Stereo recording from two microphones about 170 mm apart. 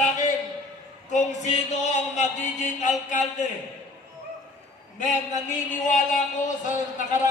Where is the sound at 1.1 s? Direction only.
45° left (ahead or behind).